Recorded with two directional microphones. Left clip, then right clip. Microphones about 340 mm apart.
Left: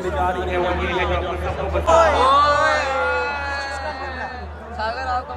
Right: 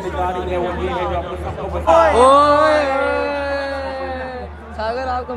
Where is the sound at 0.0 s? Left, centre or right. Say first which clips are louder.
Even; centre.